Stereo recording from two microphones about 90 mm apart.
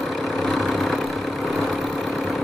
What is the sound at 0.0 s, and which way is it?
Vehicle, centre (ahead or behind).